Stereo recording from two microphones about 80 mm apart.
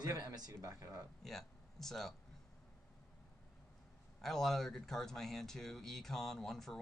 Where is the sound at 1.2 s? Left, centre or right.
Centre.